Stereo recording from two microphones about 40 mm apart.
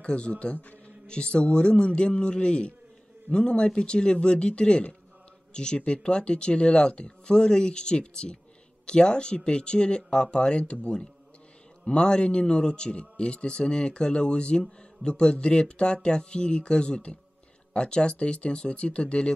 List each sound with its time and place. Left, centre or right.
0.0 s a man's voice: left
1.0 s speech: left